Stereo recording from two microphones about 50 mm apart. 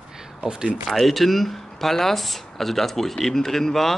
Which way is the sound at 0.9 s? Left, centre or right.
Centre.